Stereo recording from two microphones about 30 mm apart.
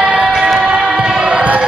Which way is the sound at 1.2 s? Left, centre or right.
Right.